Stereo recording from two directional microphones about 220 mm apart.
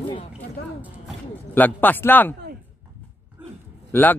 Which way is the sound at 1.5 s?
10° left (ahead or behind).